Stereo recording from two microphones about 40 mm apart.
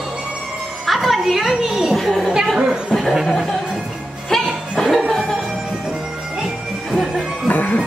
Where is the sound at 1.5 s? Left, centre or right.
Centre.